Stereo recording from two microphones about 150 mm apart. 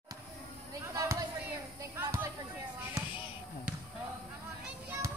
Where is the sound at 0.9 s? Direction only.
20° right (ahead or behind).